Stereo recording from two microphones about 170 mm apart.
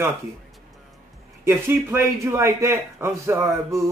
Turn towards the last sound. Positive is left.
turn(degrees=-15)  # may be behind; listen again after turning